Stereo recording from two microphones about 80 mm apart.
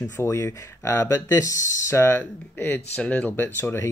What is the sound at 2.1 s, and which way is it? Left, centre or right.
Speech, left.